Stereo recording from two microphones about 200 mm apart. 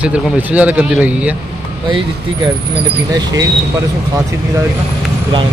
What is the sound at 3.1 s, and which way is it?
Speech, 20° right (ahead or behind).